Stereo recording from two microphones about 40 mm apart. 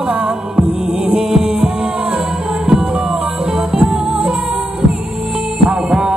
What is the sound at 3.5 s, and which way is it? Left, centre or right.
Music, right.